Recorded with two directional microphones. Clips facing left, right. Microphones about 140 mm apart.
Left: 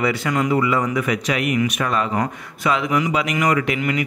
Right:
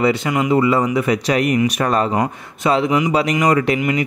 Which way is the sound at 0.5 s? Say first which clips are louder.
Right 6 dB; 30° right (ahead or behind).